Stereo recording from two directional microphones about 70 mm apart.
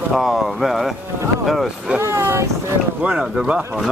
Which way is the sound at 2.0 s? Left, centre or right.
Right.